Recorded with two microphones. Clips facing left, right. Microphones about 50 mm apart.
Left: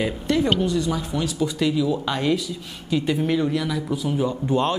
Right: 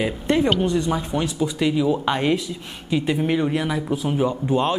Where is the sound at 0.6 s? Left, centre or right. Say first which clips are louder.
Right 1 dB; right.